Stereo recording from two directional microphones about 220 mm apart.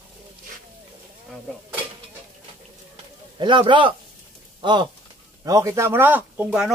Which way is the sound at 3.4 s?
20° right (ahead or behind).